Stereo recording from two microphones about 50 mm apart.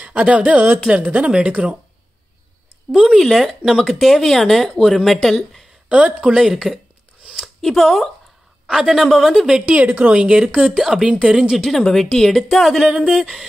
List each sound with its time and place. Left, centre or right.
0.0 s speech: right
2.9 s a sound: centre
3.2 s speech: centre
5.9 s speech: right
6.3 s speech: centre
8.6 s a man's voice: centre
9.9 s speech: centre
10.8 s speech: centre
11.5 s speech: centre
12.8 s speech: centre
13.2 s a sound: centre